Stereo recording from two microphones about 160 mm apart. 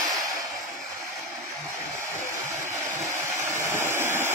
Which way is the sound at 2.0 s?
20° right (ahead or behind).